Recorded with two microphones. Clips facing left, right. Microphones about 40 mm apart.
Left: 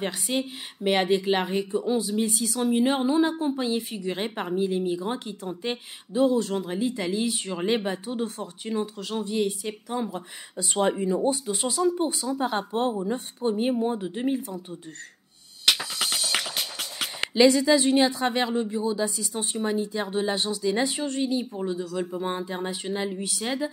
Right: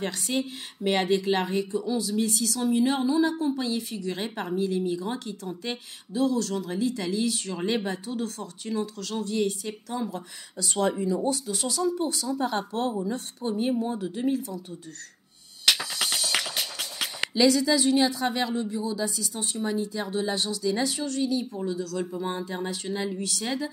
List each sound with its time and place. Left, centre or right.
0.0 s a woman's voice: centre
15.6 s music: centre
17.2 s a woman's voice: left